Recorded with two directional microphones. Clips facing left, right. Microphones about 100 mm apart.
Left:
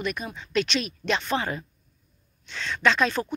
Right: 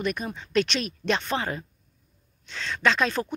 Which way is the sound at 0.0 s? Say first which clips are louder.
Right 2 dB; 40° right (ahead or behind).